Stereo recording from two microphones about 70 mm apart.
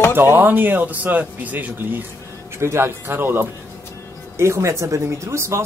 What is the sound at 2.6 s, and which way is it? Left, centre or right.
Speech, right.